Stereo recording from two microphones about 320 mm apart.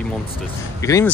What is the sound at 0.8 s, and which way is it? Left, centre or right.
Speech, centre.